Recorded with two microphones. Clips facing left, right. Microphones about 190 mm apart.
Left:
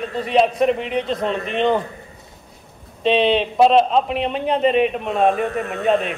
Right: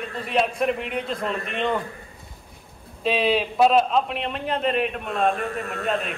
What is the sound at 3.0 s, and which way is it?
A man's voice, 5° right (ahead or behind).